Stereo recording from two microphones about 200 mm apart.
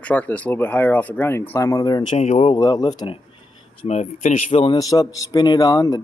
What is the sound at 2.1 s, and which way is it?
Speech, 35° left (ahead or behind).